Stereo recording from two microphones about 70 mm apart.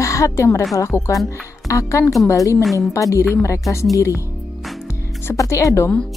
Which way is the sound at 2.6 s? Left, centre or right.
Centre.